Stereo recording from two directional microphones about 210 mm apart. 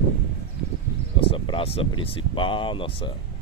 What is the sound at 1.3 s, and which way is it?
Speech, 25° left (ahead or behind).